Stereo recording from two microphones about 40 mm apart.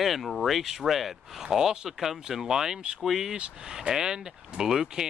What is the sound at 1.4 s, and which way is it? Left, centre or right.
Speech, centre.